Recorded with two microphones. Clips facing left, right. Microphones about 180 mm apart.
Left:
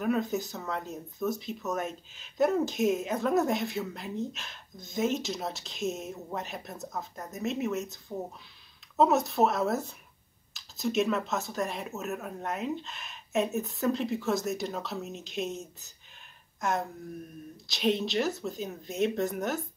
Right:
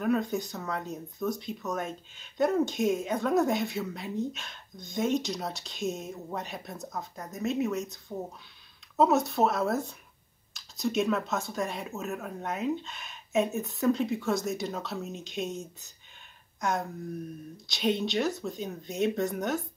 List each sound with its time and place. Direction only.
0.0 s speech: centre (ahead or behind)